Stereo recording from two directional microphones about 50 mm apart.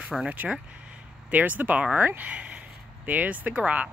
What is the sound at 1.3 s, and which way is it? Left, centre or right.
Speech, right.